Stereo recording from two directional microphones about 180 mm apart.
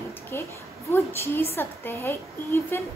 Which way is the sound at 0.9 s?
15° left (ahead or behind).